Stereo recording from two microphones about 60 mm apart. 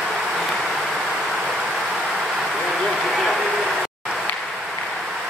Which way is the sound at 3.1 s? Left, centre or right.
Centre.